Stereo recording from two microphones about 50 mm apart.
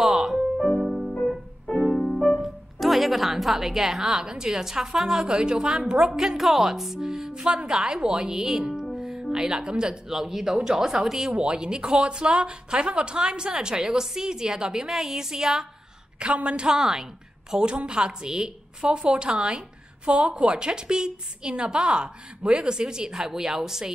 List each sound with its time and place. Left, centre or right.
0.0 s music: centre
0.7 s music: centre
9.3 s speech: centre
16.2 s a woman's voice: right